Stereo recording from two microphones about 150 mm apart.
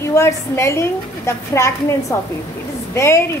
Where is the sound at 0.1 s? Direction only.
20° left (ahead or behind).